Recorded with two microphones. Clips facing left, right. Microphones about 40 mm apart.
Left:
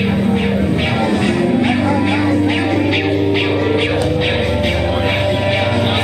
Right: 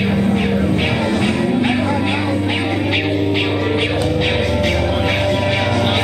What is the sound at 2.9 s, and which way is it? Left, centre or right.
Music, centre.